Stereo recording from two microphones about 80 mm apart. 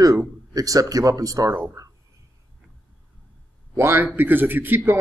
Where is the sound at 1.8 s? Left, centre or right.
Right.